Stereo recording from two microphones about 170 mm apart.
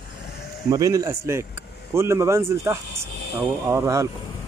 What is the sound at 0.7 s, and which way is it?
A man's voice, 20° right (ahead or behind).